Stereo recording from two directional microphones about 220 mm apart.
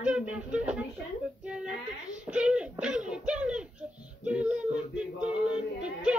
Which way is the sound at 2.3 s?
5° right (ahead or behind).